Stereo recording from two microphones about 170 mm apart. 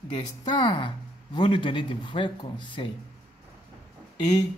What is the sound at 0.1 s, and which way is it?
Speech, 25° left (ahead or behind).